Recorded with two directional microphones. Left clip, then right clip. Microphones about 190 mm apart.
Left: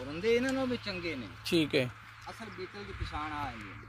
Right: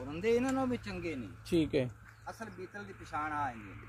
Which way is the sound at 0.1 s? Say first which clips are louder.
Left 2 dB; 35° right (ahead or behind).